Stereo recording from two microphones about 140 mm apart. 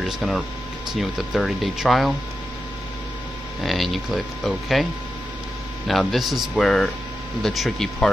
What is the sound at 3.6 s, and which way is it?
Speech, centre (ahead or behind).